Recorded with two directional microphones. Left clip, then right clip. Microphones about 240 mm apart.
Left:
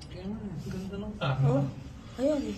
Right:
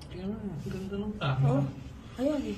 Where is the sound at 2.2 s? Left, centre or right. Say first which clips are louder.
Left 2 dB; centre.